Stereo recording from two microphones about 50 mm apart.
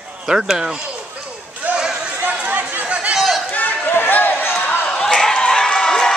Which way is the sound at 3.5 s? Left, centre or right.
Left.